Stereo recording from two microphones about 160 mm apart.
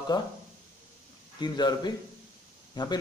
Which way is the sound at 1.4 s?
25° left (ahead or behind).